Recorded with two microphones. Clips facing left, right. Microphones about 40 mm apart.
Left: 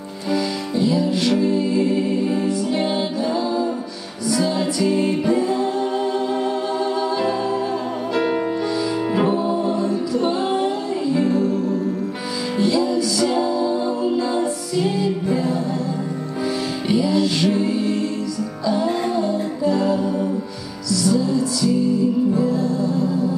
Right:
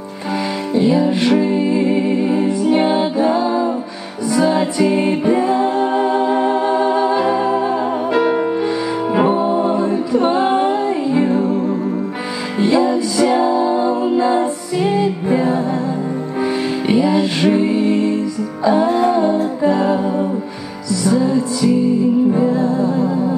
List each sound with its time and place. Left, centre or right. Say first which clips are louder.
0.3 s music: right 3 dB; right
16.8 s music: right 3 dB; right